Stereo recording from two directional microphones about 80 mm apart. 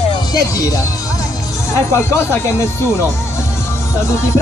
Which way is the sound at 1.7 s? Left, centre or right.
Left.